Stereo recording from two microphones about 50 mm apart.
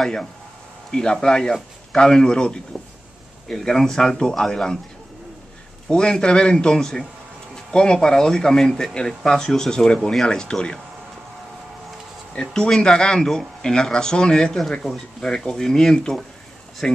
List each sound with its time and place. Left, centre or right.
0.0 s speech: centre
5.9 s speech: centre
12.4 s speech: centre